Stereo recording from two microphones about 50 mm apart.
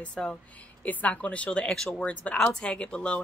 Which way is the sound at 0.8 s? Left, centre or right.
Left.